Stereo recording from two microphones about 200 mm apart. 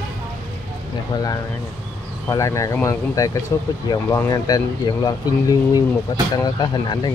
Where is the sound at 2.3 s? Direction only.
15° left (ahead or behind).